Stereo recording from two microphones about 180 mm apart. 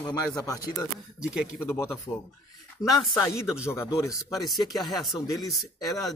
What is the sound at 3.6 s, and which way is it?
Speech, 15° left (ahead or behind).